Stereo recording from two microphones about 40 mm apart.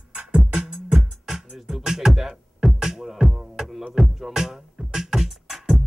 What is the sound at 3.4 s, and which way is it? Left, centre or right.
Music, centre.